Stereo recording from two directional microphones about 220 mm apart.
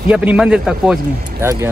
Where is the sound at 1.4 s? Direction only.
15° right (ahead or behind).